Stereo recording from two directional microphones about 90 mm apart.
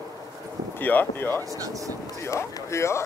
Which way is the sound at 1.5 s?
40° right (ahead or behind).